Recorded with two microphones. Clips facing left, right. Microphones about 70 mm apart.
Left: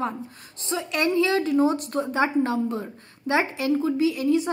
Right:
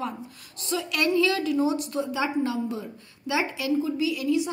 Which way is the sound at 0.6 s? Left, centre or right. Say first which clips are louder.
Left 1 dB; left.